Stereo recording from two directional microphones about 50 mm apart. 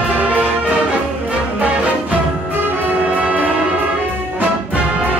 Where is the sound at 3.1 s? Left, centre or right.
Right.